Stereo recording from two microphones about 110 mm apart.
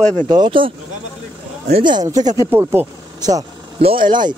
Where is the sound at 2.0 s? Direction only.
35° right (ahead or behind).